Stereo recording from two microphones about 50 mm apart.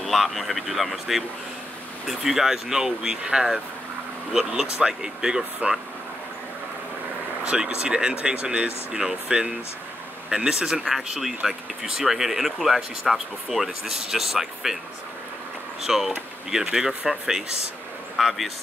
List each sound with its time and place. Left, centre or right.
0.0 s speech: centre
7.4 s speech: centre
15.8 s speech: centre